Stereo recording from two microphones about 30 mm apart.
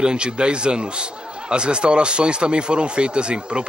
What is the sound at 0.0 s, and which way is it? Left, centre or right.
A man's voice, right.